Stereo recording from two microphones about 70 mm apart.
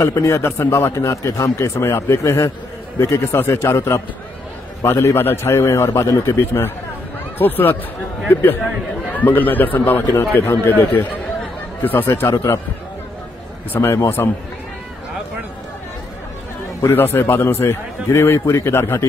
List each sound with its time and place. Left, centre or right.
0.0 s a man's voice: left
13.9 s a man's voice: left
16.9 s a man's voice: left